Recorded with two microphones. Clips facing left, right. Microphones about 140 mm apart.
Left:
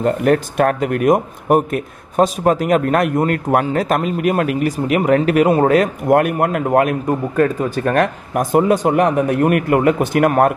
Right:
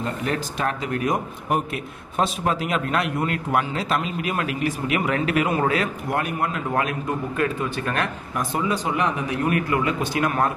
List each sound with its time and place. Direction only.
0.0 s speech: 55° left (ahead or behind)